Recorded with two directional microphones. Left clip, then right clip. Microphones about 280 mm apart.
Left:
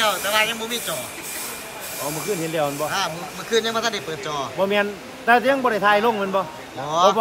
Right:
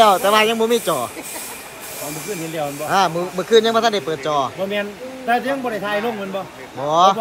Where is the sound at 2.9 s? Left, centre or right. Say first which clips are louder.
Right 8 dB; centre.